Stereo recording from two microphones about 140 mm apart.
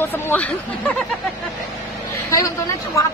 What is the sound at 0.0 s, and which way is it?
Speech, 15° left (ahead or behind).